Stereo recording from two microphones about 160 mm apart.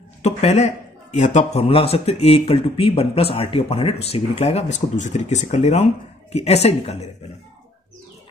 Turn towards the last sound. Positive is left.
turn(degrees=40)  # may be behind; listen again after turning